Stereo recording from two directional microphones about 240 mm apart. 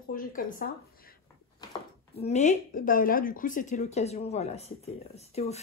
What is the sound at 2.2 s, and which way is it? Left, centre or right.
Speech, left.